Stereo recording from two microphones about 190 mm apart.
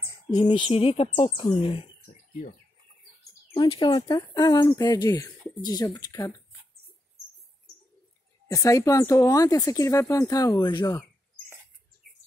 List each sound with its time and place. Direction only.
0.5 s speech: 30° left (ahead or behind)
3.5 s speech: 25° left (ahead or behind)
8.5 s speech: 20° left (ahead or behind)